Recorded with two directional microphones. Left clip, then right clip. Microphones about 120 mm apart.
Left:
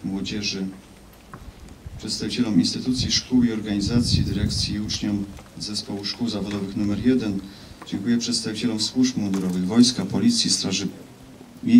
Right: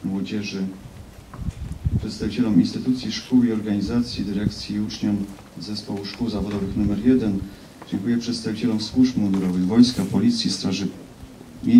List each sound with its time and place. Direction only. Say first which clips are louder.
0.2 s a man's voice: left 2 dB; 40° left (ahead or behind)
2.0 s a man's voice: even; 40° left (ahead or behind)